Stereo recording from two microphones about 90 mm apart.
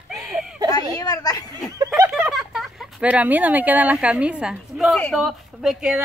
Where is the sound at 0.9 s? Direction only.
45° left (ahead or behind).